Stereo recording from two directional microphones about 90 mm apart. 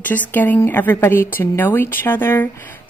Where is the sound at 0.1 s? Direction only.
20° left (ahead or behind).